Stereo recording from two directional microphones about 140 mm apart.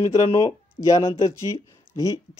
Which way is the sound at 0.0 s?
45° left (ahead or behind).